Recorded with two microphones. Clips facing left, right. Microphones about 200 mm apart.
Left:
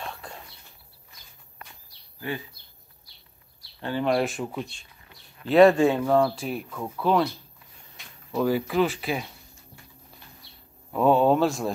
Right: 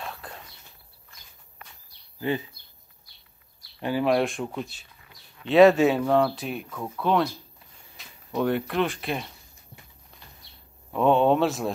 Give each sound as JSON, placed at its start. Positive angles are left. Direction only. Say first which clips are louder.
{"t": 0.0, "sound": "a sound", "louder": "even", "side_deg": 0}
{"t": 2.1, "sound": "speech", "louder": "right 5 dB", "side_deg": -20}
{"t": 3.8, "sound": "speech", "louder": "right 1 dB", "side_deg": -5}
{"t": 10.9, "sound": "speech", "louder": "even", "side_deg": 5}